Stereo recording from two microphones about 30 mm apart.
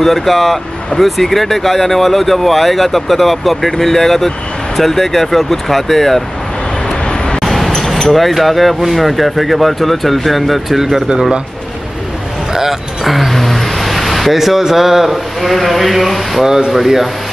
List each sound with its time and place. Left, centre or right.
0.0 s speech: centre
7.4 s a sound: centre
8.1 s speech: centre
13.0 s vehicle: centre
14.6 s speech: centre